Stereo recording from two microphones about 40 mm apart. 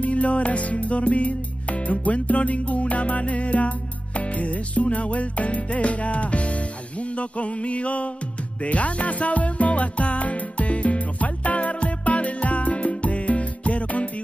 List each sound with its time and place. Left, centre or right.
0.0 s music: left